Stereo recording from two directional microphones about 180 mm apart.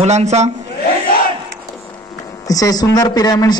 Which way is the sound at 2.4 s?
20° left (ahead or behind).